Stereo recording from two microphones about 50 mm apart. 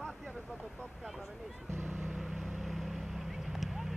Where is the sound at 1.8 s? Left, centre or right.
Right.